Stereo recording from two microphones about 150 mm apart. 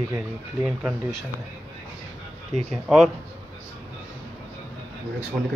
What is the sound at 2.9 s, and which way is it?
Speech, centre (ahead or behind).